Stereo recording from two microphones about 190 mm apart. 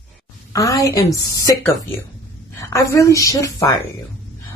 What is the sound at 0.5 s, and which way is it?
Speech, 15° left (ahead or behind).